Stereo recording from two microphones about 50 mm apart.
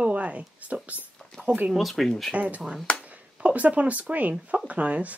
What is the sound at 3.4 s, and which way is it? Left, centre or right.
Speech, right.